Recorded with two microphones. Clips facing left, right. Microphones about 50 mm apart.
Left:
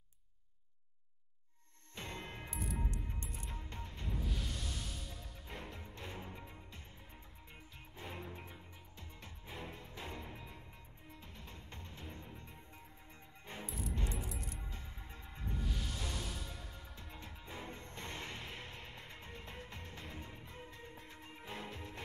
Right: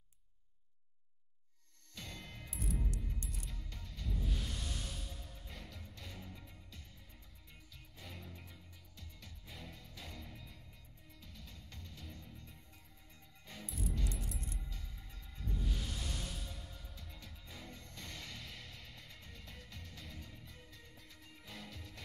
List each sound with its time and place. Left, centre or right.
2.0 s music: left
2.5 s music: centre
2.8 s music: left
4.2 s music: centre
5.5 s music: left
8.0 s music: left
13.7 s music: centre
13.9 s music: left
15.6 s music: centre
16.7 s music: left